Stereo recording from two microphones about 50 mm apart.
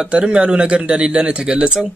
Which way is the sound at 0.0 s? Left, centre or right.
Centre.